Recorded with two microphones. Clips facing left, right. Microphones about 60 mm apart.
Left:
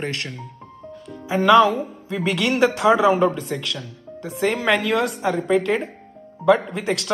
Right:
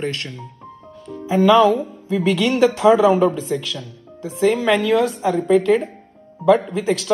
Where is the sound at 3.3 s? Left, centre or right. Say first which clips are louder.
Right 3 dB; left.